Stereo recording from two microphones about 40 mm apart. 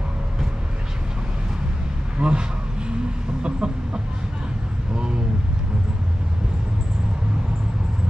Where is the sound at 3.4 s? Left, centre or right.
Right.